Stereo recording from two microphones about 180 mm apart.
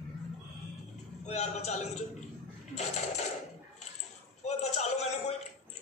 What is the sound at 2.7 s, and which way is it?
Coin, 40° left (ahead or behind).